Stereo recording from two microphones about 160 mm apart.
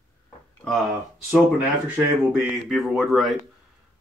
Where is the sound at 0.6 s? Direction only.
5° left (ahead or behind).